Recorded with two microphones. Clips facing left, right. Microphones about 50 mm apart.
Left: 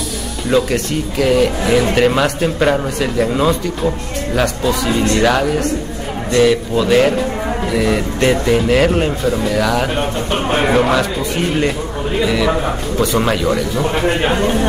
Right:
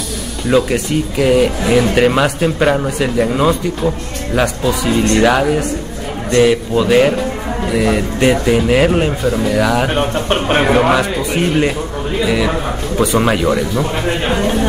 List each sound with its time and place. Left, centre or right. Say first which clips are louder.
0.5 s speech: right 2 dB; centre
9.9 s speech: right 3 dB; right
10.7 s speech: right 1 dB; centre
12.9 s speech: right 3 dB; right
14.0 s a man's voice: left 1 dB; centre